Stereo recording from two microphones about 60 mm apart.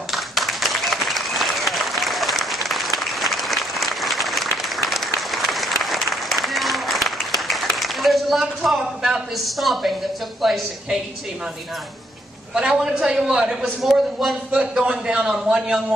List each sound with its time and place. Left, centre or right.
0.1 s applause: centre
10.4 s speech: centre
12.5 s a man's voice: centre